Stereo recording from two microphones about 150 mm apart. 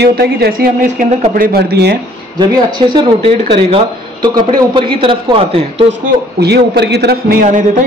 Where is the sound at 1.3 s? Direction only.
80° right.